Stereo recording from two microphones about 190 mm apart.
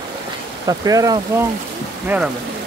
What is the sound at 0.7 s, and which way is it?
Speech, 20° right (ahead or behind).